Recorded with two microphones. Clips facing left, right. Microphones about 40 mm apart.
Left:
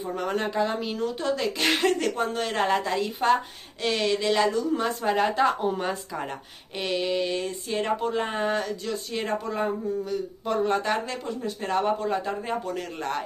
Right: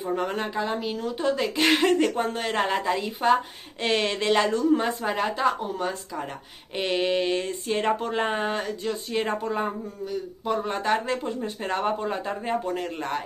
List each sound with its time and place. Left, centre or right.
0.1 s speech: centre
1.1 s speech: centre
3.8 s speech: right
5.0 s speech: centre
6.7 s a sound: right
7.7 s speech: right
8.5 s a sound: centre
9.5 s speech: centre
11.1 s a sound: right
12.1 s speech: centre